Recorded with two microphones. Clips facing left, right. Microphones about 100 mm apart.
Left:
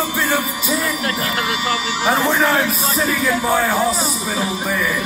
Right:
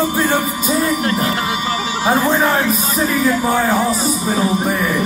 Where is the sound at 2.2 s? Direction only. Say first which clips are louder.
Right 1 dB; 40° right (ahead or behind).